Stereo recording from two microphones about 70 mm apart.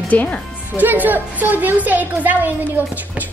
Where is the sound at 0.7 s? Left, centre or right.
Right.